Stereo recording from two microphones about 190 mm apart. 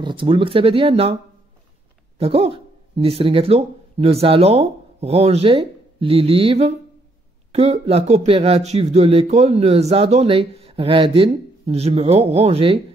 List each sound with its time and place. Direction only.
0.0 s speech: 25° right (ahead or behind)
2.1 s speech: 30° right (ahead or behind)